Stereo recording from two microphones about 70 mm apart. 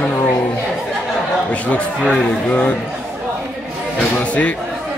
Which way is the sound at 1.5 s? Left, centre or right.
Centre.